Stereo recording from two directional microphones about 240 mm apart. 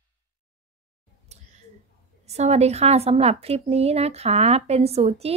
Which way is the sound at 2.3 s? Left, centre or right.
Right.